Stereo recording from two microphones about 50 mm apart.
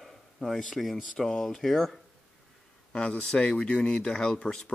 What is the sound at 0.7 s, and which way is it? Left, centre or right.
Speech, centre.